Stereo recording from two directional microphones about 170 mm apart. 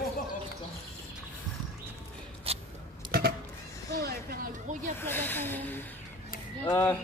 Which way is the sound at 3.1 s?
70° right (ahead or behind).